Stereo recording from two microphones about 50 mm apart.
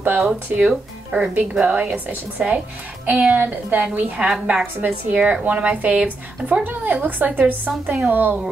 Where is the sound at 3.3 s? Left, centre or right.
Right.